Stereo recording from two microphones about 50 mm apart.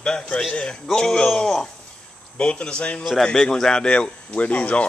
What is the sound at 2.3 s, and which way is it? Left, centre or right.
Speech, centre.